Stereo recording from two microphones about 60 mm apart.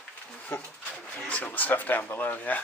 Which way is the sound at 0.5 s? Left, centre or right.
Left.